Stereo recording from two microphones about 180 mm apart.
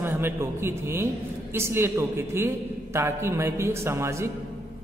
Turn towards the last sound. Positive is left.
turn(degrees=-15)  # may be behind; listen again after turning